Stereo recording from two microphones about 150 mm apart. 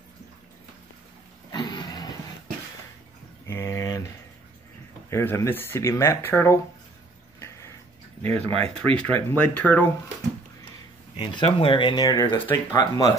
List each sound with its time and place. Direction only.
1.5 s a sound: 30° left (ahead or behind)
3.4 s a sound: 20° left (ahead or behind)
5.1 s speech: 15° left (ahead or behind)
7.3 s tick-tock: 15° left (ahead or behind)
8.5 s speech: 40° right (ahead or behind)
8.9 s speech: 10° left (ahead or behind)
11.1 s speech: 35° left (ahead or behind); by 12.5 s 15° left (ahead or behind)
12.7 s speech: 25° left (ahead or behind)